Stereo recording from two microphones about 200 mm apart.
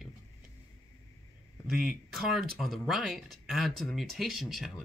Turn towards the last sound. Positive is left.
turn(degrees=0)  # may be behind; listen again after turning